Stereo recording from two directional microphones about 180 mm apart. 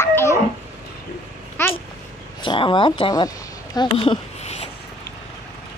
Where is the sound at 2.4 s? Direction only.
25° left (ahead or behind).